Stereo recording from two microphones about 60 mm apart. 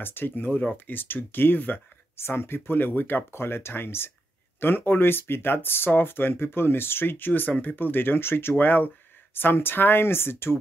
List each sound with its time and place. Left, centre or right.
0.0 s speech: left